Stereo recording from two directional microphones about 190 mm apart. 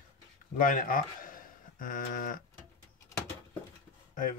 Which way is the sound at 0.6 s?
45° left (ahead or behind).